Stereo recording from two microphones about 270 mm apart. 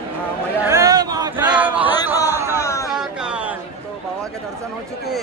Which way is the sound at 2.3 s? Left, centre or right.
Centre.